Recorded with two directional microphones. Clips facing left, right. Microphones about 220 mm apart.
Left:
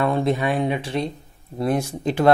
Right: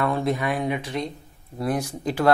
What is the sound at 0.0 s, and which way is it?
Speech, 25° left (ahead or behind).